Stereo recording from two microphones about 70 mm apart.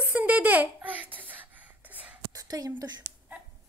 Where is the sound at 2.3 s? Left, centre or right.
Right.